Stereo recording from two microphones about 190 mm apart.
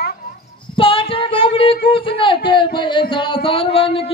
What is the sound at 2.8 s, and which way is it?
Music, 25° left (ahead or behind).